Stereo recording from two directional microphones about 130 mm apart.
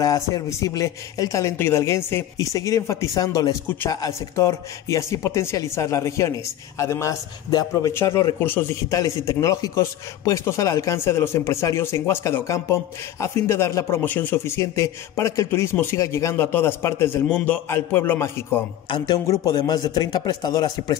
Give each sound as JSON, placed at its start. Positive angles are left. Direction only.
{"t": 0.0, "sound": "a man's voice", "side_deg": 25}
{"t": 18.9, "sound": "speech", "side_deg": 35}